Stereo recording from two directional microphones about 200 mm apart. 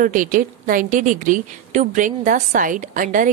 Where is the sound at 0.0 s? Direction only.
40° right (ahead or behind).